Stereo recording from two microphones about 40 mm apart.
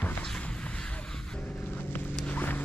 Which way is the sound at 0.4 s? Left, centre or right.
Left.